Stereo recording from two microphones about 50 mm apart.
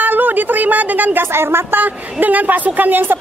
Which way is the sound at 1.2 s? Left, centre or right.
Right.